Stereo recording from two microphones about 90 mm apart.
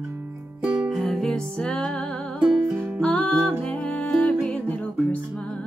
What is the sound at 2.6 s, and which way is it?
Music, 20° right (ahead or behind).